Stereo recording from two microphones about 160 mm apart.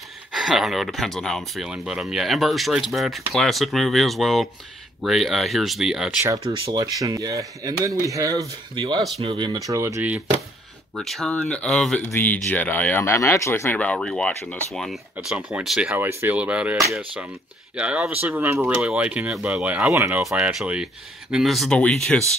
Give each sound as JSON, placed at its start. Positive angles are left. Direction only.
{"t": 0.3, "sound": "speech", "side_deg": 0}
{"t": 6.4, "sound": "speech", "side_deg": -35}
{"t": 6.8, "sound": "speech", "side_deg": -20}
{"t": 11.0, "sound": "speech", "side_deg": 5}
{"t": 17.7, "sound": "speech", "side_deg": -5}
{"t": 20.2, "sound": "speech", "side_deg": -5}